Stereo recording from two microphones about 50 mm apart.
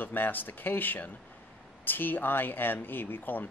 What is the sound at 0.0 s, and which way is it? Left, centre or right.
Speech, left.